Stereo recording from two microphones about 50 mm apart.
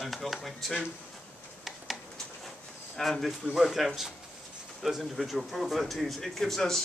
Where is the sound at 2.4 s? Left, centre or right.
Centre.